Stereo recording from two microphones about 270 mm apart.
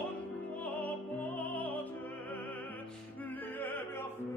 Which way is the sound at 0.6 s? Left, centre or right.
Centre.